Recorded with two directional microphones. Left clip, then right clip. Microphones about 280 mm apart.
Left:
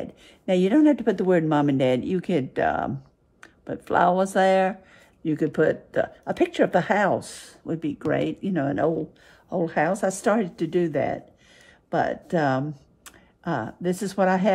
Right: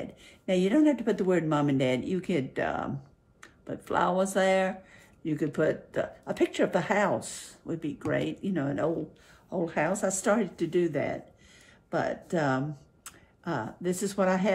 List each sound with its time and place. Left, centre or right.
0.5 s speech: left